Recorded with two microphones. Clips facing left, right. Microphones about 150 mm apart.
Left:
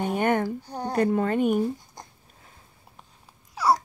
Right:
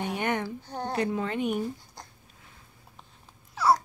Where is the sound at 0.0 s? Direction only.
45° left (ahead or behind).